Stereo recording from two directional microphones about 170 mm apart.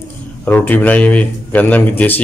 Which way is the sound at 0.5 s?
10° left (ahead or behind).